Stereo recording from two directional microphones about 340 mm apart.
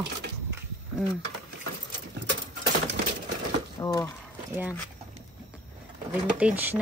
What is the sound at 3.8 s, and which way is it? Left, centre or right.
Speech, centre.